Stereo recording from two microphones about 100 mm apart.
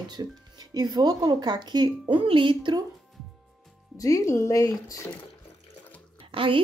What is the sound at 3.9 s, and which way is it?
Speech, 35° left (ahead or behind).